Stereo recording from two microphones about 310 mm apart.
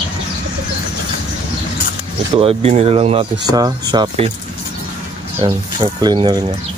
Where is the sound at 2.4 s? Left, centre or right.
Centre.